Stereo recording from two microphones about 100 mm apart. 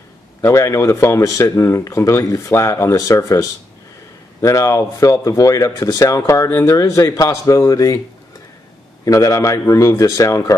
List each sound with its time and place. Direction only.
0.4 s speech: 30° left (ahead or behind)
9.0 s speech: 35° left (ahead or behind)